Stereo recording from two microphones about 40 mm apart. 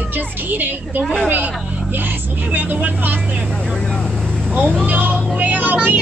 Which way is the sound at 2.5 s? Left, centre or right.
Right.